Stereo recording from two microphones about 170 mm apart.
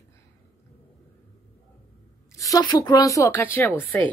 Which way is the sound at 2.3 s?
20° left (ahead or behind).